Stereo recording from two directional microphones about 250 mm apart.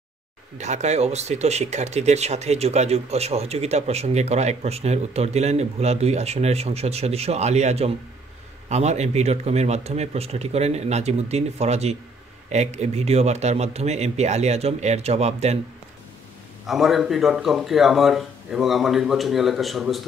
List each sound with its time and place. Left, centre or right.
0.6 s speech: right
16.6 s speech: centre